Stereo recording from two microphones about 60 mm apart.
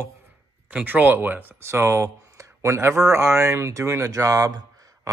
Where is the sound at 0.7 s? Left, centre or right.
Right.